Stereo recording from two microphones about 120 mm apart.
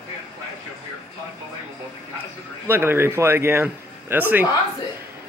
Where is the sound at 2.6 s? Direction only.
20° right (ahead or behind).